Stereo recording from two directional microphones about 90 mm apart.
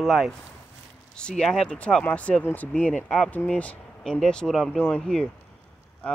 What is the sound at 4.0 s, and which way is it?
Speech, 5° left (ahead or behind).